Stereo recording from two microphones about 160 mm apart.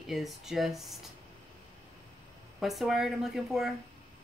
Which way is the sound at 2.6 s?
Centre (ahead or behind).